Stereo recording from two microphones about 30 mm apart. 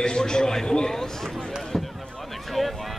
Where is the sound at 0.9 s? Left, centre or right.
Centre.